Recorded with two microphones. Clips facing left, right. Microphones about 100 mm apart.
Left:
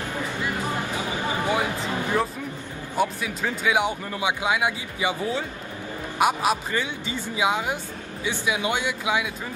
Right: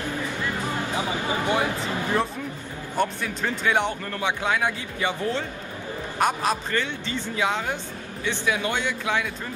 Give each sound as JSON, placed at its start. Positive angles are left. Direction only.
{"t": 0.9, "sound": "a sound", "side_deg": -20}
{"t": 1.5, "sound": "music", "side_deg": 5}
{"t": 3.0, "sound": "speech", "side_deg": 5}